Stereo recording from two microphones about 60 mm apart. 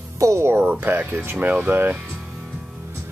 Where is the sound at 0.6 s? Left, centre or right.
Right.